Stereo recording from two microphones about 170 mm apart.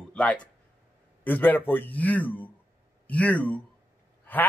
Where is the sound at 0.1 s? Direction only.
5° left (ahead or behind).